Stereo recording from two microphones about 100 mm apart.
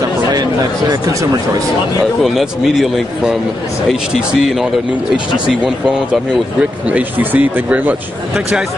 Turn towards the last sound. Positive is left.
turn(degrees=-15)  # may be behind; listen again after turning